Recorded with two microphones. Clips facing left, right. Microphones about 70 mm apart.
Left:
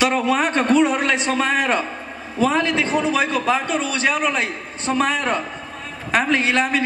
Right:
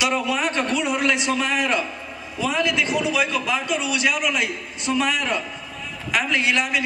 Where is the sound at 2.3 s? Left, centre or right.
Left.